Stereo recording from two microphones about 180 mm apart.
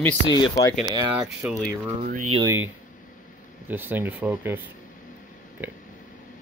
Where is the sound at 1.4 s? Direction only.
10° right (ahead or behind).